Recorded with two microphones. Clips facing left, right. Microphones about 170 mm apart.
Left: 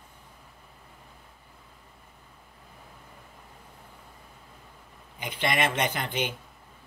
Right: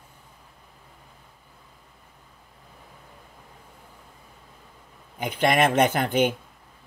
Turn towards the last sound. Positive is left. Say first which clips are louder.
# right 9 dB
turn(degrees=-50)  # may be behind; listen again after turning